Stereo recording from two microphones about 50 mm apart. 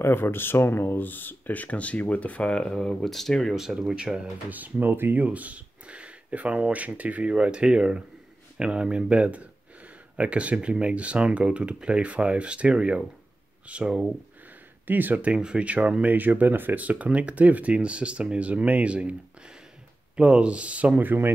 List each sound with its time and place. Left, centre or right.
0.0 s speech: left
2.5 s speech: centre
3.5 s speech: centre
4.5 s speech: right
5.2 s speech: right
7.3 s speech: centre
14.9 s speech: right
15.2 s speech: right
21.0 s speech: right